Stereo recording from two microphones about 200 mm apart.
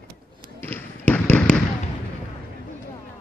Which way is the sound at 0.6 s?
10° left (ahead or behind).